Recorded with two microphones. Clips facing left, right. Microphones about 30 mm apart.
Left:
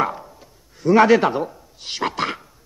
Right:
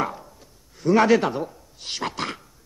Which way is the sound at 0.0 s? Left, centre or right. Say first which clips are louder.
Left 5 dB; centre.